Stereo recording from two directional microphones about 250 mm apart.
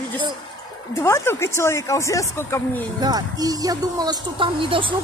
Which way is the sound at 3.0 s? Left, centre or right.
Centre.